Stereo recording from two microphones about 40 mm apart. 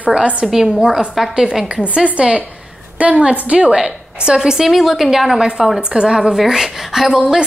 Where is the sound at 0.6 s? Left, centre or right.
Centre.